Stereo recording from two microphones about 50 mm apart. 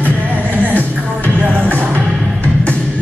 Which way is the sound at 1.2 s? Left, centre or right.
Right.